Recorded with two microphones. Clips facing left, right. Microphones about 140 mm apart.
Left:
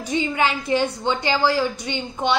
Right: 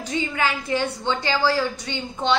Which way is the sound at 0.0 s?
20° left (ahead or behind).